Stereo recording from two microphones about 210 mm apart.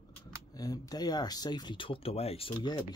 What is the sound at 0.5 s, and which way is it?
Speech, 15° left (ahead or behind).